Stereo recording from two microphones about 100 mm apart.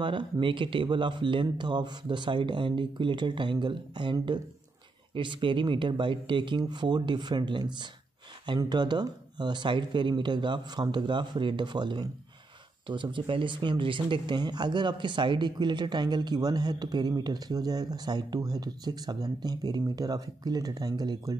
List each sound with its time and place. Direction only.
0.0 s speech: 55° right (ahead or behind)